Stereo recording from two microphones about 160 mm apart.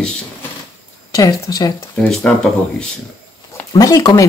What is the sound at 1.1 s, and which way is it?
Speech, 20° left (ahead or behind).